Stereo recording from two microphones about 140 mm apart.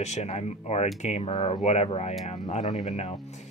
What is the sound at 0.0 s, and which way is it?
Speech, 55° left (ahead or behind).